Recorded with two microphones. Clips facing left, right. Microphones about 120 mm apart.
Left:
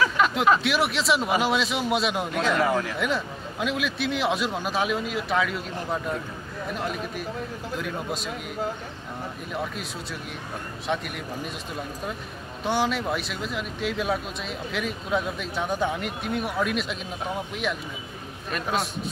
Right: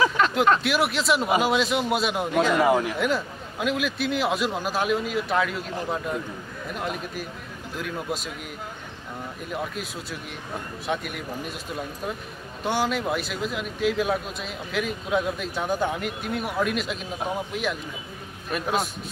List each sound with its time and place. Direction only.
0.2 s speech: centre (ahead or behind)
2.6 s speech: 15° right (ahead or behind)
3.0 s speech: centre (ahead or behind)
9.5 s speech: centre (ahead or behind)
10.9 s speech: centre (ahead or behind)
12.6 s speech: centre (ahead or behind)
18.5 s speech: centre (ahead or behind)